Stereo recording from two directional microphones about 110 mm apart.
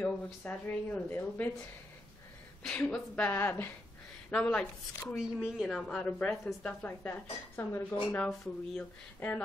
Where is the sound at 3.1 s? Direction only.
20° left (ahead or behind).